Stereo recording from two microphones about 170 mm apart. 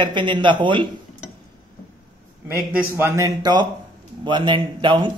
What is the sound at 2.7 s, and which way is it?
A man's voice, 10° right (ahead or behind).